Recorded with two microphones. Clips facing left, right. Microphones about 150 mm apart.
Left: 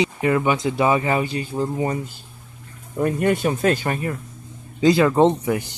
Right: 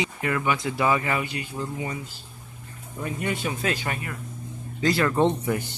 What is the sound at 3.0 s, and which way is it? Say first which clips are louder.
Speech: left 9 dB; 55° left (ahead or behind).